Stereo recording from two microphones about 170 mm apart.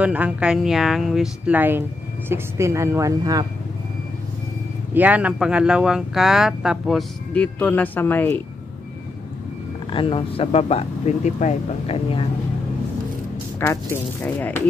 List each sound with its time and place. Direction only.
0.0 s speech: 10° right (ahead or behind)
4.9 s speech: 10° right (ahead or behind); by 8.4 s 10° left (ahead or behind)
9.8 s speech: 30° left (ahead or behind)
13.6 s speech: 15° left (ahead or behind)